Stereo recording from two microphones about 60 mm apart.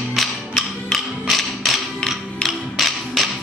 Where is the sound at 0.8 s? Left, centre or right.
Centre.